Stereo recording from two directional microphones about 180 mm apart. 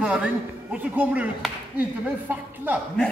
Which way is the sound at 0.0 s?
5° right (ahead or behind).